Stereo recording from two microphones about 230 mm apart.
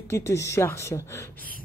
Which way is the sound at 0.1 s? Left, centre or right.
Centre.